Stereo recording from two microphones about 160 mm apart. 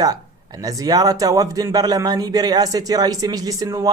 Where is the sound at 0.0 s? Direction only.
20° right (ahead or behind).